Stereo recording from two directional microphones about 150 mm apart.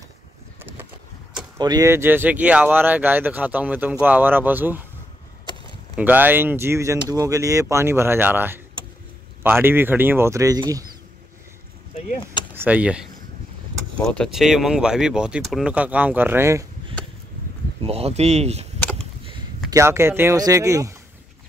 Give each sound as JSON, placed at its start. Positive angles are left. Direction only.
{"t": 1.6, "sound": "speech", "side_deg": -25}
{"t": 5.9, "sound": "speech", "side_deg": -10}
{"t": 12.5, "sound": "speech", "side_deg": -10}
{"t": 14.0, "sound": "speech", "side_deg": 5}
{"t": 17.8, "sound": "speech", "side_deg": -40}
{"t": 19.7, "sound": "speech", "side_deg": -20}